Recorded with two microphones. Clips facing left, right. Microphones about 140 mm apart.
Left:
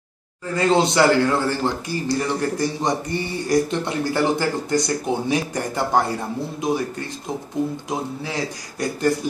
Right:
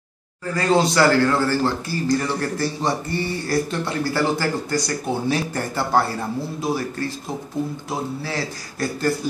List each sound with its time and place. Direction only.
0.6 s a man's voice: 20° left (ahead or behind)